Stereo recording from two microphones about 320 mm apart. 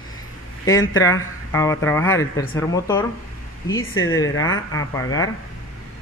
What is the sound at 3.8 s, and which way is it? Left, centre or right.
Speech, left.